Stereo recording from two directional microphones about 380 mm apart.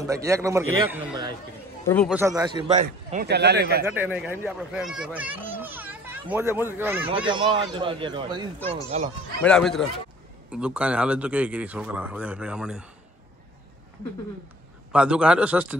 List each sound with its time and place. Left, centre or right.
0.0 s a man's voice: centre; by 3.8 s right
3.8 s a man's voice: centre
9.4 s speech: centre
14.9 s speech: centre